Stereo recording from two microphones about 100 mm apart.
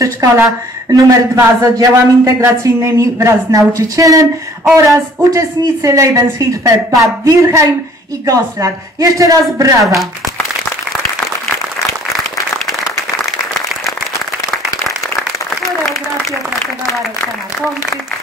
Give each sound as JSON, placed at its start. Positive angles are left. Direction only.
{"t": 0.0, "sound": "speech", "side_deg": -30}
{"t": 15.6, "sound": "applause", "side_deg": 0}